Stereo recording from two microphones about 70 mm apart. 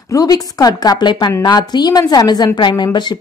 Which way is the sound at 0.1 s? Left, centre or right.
Left.